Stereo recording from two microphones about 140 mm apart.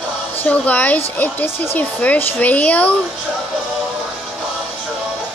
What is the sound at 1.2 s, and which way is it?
Speech, 15° left (ahead or behind).